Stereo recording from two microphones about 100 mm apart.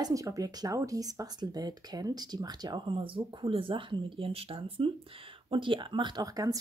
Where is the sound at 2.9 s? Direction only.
65° right (ahead or behind).